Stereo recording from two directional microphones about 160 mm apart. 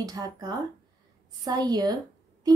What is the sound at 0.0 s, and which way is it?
Speech, 25° right (ahead or behind).